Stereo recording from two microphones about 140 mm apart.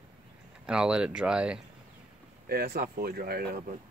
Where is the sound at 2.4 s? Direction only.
90° right.